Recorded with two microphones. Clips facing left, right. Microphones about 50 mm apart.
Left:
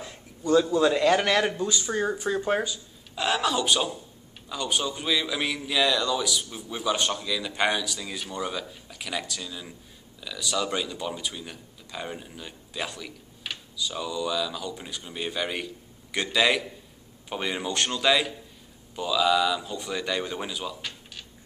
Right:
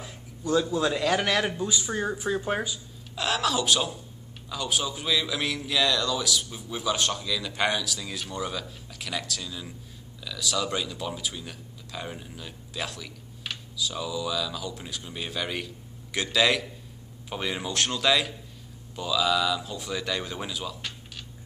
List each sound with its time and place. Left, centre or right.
0.0 s a man's voice: centre